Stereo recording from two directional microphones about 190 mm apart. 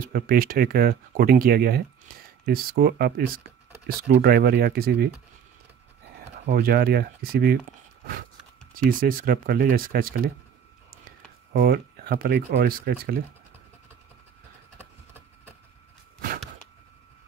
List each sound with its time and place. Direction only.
0.0 s speech: 50° right (ahead or behind)
6.4 s speech: 55° right (ahead or behind)
8.7 s speech: 45° right (ahead or behind)
16.2 s a sound: 50° right (ahead or behind)